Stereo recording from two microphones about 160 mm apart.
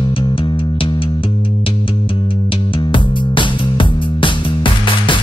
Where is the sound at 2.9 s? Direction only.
30° left (ahead or behind).